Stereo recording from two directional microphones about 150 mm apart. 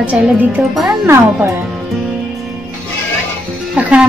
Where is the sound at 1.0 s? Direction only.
15° right (ahead or behind).